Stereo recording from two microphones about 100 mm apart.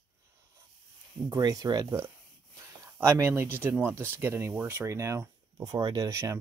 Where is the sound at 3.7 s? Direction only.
20° right (ahead or behind).